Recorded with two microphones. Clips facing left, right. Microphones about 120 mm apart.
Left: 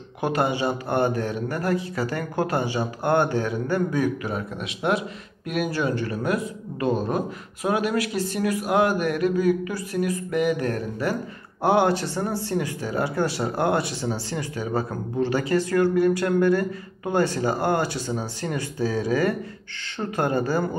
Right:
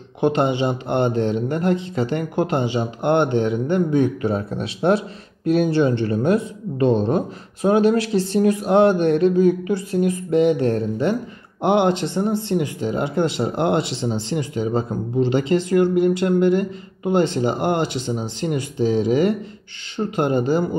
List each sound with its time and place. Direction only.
0.2 s speech: 25° right (ahead or behind)